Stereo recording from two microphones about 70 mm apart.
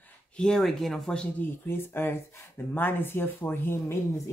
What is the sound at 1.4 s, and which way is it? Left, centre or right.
Speech, left.